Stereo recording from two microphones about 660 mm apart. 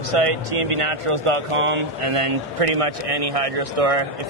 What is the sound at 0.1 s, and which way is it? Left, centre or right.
Speech, right.